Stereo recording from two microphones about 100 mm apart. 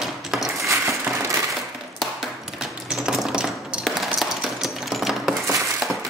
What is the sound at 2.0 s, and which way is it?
Typewriter, 5° right (ahead or behind).